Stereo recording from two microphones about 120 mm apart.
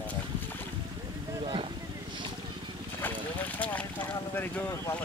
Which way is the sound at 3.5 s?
10° left (ahead or behind).